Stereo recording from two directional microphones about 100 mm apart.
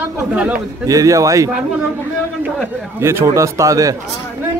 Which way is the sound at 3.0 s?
30° right (ahead or behind).